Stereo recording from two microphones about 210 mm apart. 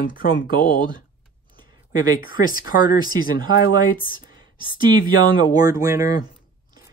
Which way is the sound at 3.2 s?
45° left (ahead or behind).